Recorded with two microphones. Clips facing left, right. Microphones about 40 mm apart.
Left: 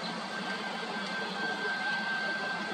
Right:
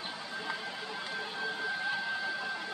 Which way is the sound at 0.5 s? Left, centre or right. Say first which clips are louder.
Left 3 dB; centre.